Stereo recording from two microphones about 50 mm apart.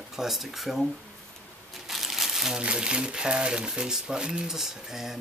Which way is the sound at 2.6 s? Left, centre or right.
Centre.